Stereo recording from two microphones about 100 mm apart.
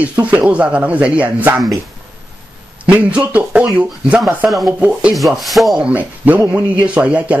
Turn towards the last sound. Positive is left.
turn(degrees=-15)  # may be behind; listen again after turning